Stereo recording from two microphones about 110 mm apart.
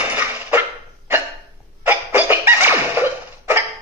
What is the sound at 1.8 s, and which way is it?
Music, 20° right (ahead or behind).